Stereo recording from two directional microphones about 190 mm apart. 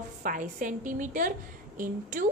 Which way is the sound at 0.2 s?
45° right (ahead or behind).